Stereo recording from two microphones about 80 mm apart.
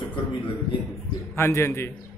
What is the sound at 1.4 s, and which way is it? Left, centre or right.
Speech, left.